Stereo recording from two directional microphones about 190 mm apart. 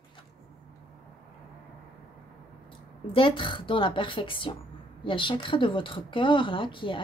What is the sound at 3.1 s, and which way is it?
A woman's voice, 25° left (ahead or behind).